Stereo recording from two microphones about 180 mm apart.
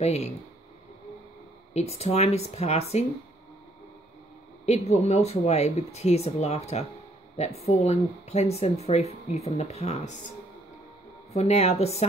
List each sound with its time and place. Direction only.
0.0 s speech: 35° left (ahead or behind)
1.7 s speech: 35° left (ahead or behind)
4.6 s speech: 40° left (ahead or behind)
11.3 s speech: 35° left (ahead or behind)